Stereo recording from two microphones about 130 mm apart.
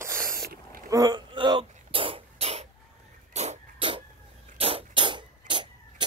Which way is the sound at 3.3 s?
60° right (ahead or behind).